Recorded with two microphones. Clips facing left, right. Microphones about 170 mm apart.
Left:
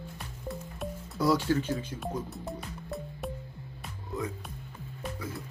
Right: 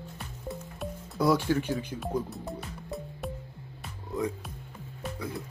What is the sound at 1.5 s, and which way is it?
Speech, 15° right (ahead or behind).